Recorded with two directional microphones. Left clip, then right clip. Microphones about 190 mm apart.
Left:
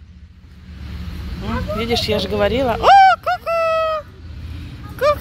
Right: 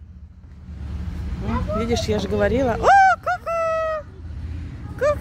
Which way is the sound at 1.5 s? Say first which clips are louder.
Left 3 dB; 10° right (ahead or behind).